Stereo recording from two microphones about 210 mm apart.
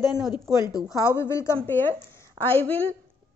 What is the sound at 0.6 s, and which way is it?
A woman's voice, 15° left (ahead or behind).